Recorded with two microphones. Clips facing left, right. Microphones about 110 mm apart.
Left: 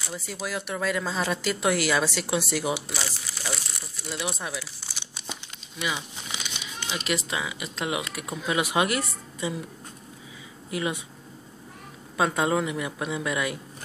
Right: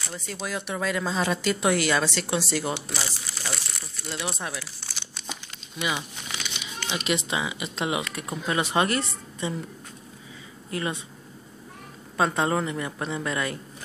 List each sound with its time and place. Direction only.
0.0 s speech: 5° left (ahead or behind)
4.1 s speech: 5° left (ahead or behind)
6.3 s a sound: 15° left (ahead or behind)
7.1 s speech: centre (ahead or behind)
10.7 s speech: 10° left (ahead or behind)
12.2 s speech: 5° left (ahead or behind)